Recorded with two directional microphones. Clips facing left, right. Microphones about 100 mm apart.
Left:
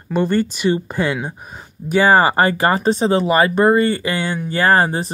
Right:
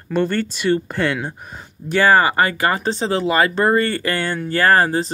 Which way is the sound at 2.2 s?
30° left (ahead or behind).